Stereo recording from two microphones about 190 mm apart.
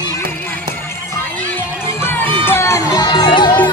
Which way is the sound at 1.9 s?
10° left (ahead or behind).